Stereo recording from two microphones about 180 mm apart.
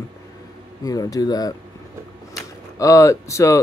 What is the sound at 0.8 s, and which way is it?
Speech, 20° left (ahead or behind).